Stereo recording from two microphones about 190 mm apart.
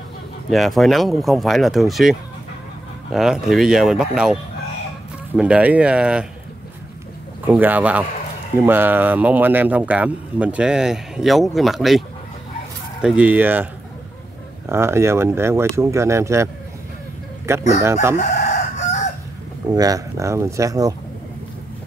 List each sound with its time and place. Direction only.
0.5 s speech: centre (ahead or behind)
7.4 s speech: 10° right (ahead or behind)
13.0 s speech: 5° right (ahead or behind)
14.7 s speech: 15° right (ahead or behind)
17.5 s speech: 15° right (ahead or behind)
18.1 s chicken: 35° left (ahead or behind)
19.7 s speech: 20° right (ahead or behind)